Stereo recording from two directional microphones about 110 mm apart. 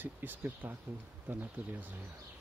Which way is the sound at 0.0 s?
20° right (ahead or behind).